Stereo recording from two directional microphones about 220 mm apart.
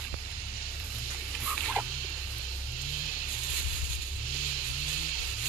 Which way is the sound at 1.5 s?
5° right (ahead or behind).